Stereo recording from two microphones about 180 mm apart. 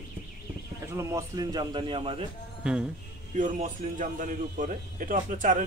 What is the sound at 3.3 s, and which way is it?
Speech, 45° right (ahead or behind).